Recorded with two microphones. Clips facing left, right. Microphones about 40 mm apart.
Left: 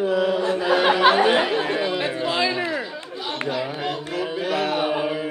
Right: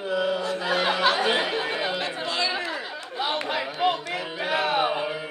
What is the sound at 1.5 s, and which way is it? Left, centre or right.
Chatter, centre.